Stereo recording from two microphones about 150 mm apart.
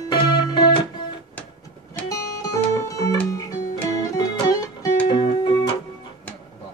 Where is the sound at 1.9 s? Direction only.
10° left (ahead or behind).